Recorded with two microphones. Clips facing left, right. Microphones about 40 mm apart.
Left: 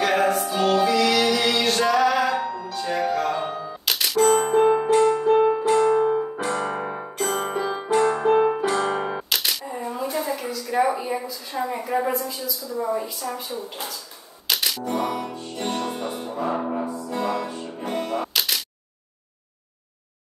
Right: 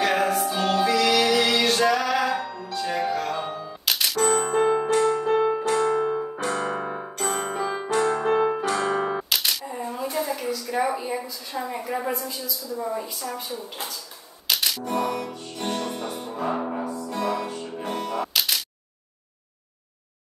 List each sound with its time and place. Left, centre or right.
0.0 s music: centre
4.6 s music: left
4.9 s music: centre
11.0 s a sound: centre
11.5 s a woman's voice: centre
14.5 s music: centre
15.0 s music: left
16.5 s music: centre
16.9 s music: left
18.3 s single-lens reflex camera: centre